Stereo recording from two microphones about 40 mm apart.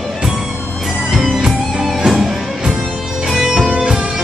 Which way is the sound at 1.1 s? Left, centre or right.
Centre.